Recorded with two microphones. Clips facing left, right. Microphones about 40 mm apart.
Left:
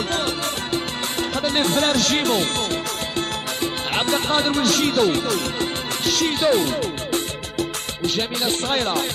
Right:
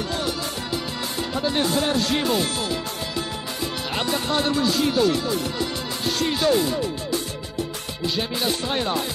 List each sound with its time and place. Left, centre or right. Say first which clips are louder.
0.1 s music: left 3 dB; left
4.6 s speech: left 1 dB; left
6.2 s speech: left 1 dB; left
8.2 s speech: right 1 dB; left